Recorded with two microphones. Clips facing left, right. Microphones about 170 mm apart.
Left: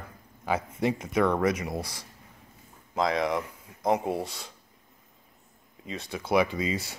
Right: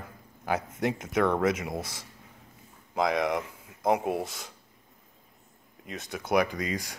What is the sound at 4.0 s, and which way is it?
Speech, 20° right (ahead or behind).